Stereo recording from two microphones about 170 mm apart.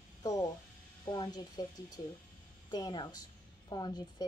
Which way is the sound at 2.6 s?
25° left (ahead or behind).